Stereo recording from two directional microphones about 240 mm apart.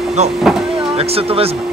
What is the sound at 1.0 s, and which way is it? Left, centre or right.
Speech, right.